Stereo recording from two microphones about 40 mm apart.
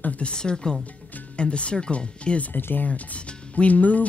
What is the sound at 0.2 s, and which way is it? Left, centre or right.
Speech, left.